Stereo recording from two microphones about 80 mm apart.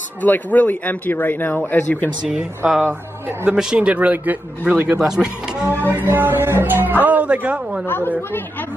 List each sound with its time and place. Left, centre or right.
0.2 s speech: left
2.2 s speech: centre
5.7 s a woman's voice: right
7.8 s speech: left